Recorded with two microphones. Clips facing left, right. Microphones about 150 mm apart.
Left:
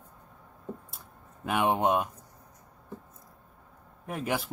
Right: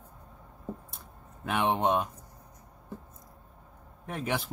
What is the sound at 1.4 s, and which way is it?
Speech, 5° left (ahead or behind).